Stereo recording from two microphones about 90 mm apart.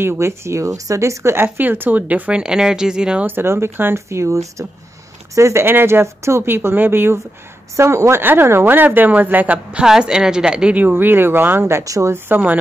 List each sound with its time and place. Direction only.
0.0 s speech: 30° right (ahead or behind); by 3.3 s 10° right (ahead or behind)
3.3 s speech: 25° right (ahead or behind)
12.3 s speech: 20° right (ahead or behind)